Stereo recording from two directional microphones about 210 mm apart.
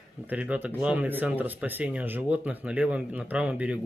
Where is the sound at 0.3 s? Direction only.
5° right (ahead or behind).